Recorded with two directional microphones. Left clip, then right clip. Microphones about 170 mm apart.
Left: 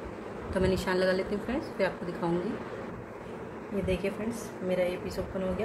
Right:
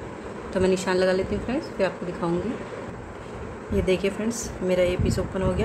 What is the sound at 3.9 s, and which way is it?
A woman's voice, 25° right (ahead or behind).